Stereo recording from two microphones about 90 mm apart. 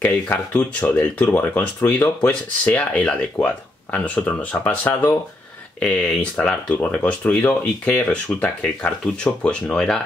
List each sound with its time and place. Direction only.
0.0 s speech: 15° left (ahead or behind)